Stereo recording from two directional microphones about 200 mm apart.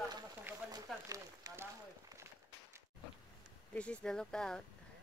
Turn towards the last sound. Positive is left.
turn(degrees=5)  # may be behind; listen again after turning